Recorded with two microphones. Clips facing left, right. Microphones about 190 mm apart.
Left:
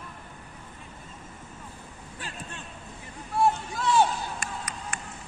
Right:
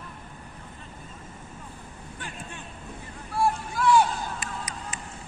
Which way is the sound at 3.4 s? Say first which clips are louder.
Left 1 dB; 25° left (ahead or behind).